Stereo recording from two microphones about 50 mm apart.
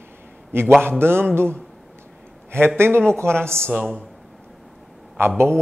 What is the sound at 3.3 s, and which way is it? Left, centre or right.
Speech, centre.